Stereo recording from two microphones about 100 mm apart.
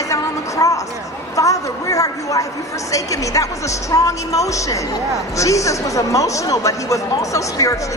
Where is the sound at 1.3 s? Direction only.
35° left (ahead or behind).